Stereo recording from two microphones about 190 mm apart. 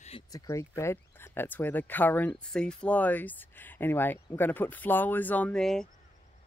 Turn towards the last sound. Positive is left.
turn(degrees=5)  # may be behind; listen again after turning